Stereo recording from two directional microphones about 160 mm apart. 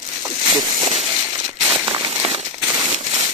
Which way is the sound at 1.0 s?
30° right (ahead or behind).